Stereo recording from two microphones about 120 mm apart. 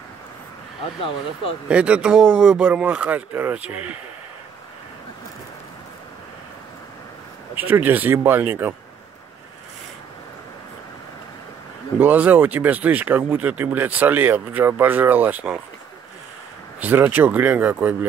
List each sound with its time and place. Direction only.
1.7 s speech: 10° right (ahead or behind)
2.6 s speech: 10° right (ahead or behind)
7.5 s speech: 15° right (ahead or behind)
12.0 s speech: 15° right (ahead or behind)
16.8 s speech: 15° right (ahead or behind)